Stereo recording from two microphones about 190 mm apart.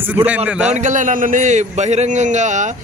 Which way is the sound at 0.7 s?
40° right (ahead or behind).